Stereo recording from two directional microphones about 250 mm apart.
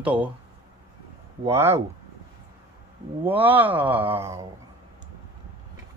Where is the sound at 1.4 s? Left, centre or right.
Centre.